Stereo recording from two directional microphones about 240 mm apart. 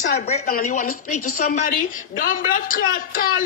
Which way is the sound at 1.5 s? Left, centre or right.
Left.